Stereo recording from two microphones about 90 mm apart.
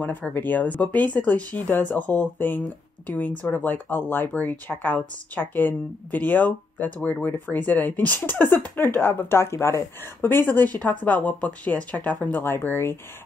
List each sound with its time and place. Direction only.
0.0 s speech: 20° left (ahead or behind)